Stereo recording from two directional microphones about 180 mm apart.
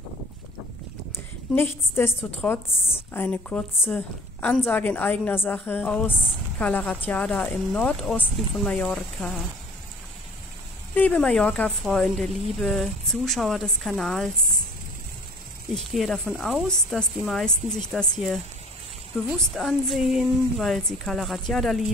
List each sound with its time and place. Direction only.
1.1 s a woman's voice: 10° left (ahead or behind)
11.0 s speech: 5° left (ahead or behind)
15.7 s speech: centre (ahead or behind)
19.3 s speech: centre (ahead or behind)